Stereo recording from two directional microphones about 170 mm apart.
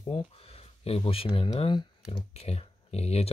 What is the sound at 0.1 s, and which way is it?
Speech, 35° left (ahead or behind).